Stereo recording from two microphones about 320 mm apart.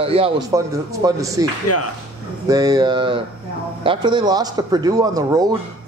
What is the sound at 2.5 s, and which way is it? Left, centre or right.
A man's voice, centre.